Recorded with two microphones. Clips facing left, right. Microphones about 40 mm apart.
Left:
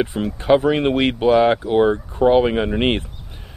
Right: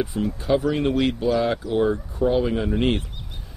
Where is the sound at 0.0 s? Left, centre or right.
Left.